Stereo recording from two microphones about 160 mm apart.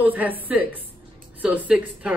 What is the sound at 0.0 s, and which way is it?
A man's voice, 10° right (ahead or behind).